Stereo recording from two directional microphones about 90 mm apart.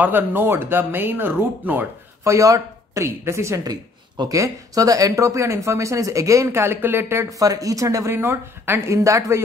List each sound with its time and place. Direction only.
0.0 s speech: 20° right (ahead or behind)
2.2 s speech: 35° right (ahead or behind)
7.3 s speech: 40° right (ahead or behind)